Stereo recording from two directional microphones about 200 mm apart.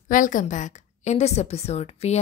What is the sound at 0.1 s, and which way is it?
A woman's voice, 40° left (ahead or behind).